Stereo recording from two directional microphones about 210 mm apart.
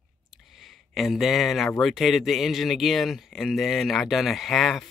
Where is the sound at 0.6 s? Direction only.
Centre (ahead or behind).